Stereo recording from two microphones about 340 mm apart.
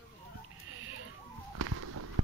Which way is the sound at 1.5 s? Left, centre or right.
Right.